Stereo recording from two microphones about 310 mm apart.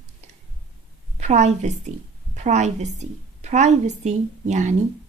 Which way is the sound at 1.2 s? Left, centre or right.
Right.